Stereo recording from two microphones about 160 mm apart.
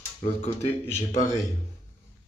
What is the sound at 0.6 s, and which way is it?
Speech, 50° left (ahead or behind).